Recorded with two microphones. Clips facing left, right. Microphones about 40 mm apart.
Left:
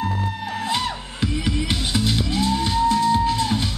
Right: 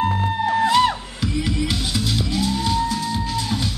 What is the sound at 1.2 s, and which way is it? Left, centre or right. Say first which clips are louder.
Music: right 1 dB; left.